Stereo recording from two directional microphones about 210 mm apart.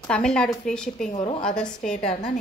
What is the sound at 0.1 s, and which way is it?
Speech, 5° left (ahead or behind).